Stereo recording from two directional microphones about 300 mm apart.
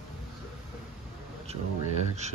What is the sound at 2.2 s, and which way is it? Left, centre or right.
Speech, right.